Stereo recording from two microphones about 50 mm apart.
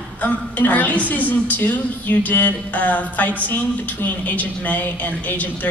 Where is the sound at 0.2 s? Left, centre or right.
Left.